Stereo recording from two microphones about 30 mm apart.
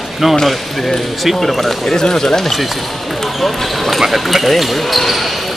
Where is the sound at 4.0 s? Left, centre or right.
Centre.